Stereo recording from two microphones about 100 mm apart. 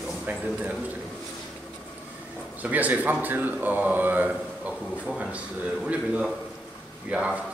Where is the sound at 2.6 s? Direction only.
15° right (ahead or behind).